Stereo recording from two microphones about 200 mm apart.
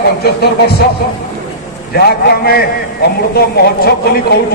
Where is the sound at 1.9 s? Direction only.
50° left (ahead or behind).